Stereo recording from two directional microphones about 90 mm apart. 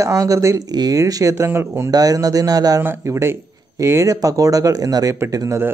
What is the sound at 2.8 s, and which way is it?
Speech, 30° right (ahead or behind).